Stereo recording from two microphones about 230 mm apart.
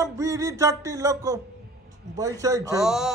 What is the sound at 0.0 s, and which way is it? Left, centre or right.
Music, centre.